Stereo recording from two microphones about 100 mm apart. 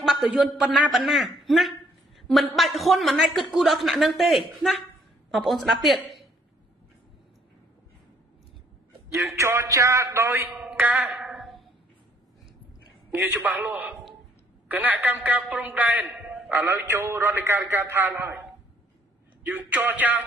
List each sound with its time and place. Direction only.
0.0 s a sound: 5° right (ahead or behind)
0.4 s a man's voice: 5° right (ahead or behind)
9.3 s a man's voice: 30° right (ahead or behind)
10.9 s a man's voice: 5° right (ahead or behind)
11.1 s a sound: 5° right (ahead or behind)
13.2 s a woman's voice: 15° right (ahead or behind)
14.7 s a woman's voice: 15° right (ahead or behind)
16.2 s a sound: 15° right (ahead or behind)
16.5 s a man's voice: 20° right (ahead or behind)
19.4 s a woman's voice: 20° right (ahead or behind)